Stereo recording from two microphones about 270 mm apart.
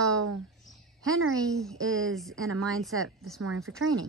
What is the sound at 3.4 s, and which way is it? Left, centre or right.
Speech, right.